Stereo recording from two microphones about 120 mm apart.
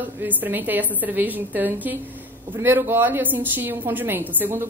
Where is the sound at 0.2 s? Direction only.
15° right (ahead or behind).